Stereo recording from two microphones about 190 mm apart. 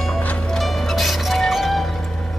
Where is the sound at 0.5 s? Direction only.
Centre (ahead or behind).